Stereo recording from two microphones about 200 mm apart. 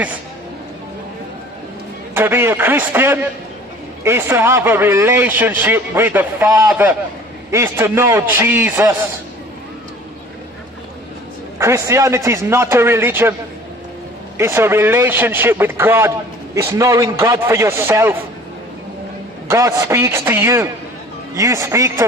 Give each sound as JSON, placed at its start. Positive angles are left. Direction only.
{"t": 2.1, "sound": "a man's voice", "side_deg": -10}
{"t": 11.5, "sound": "a man's voice", "side_deg": -15}
{"t": 14.3, "sound": "a man's voice", "side_deg": -10}
{"t": 19.4, "sound": "a man's voice", "side_deg": -15}